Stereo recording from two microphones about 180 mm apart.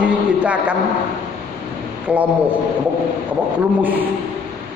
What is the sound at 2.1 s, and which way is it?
Speech, 5° right (ahead or behind).